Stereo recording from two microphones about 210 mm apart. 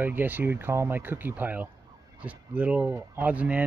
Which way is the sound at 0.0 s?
10° right (ahead or behind).